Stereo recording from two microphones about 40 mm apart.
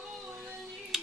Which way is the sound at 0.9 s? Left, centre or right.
Centre.